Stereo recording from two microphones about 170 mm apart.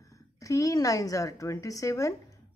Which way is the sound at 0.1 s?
20° left (ahead or behind).